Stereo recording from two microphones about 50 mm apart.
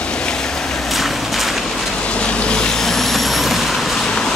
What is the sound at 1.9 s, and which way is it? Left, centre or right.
Vehicle, left.